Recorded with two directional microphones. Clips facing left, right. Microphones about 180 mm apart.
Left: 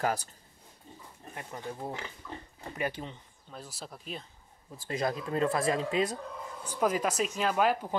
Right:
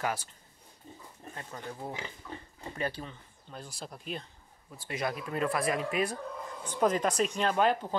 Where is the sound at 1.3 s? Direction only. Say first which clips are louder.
Left 2 dB; 20° left (ahead or behind).